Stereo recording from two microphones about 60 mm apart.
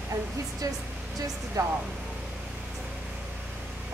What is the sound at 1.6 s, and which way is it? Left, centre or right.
Speech, right.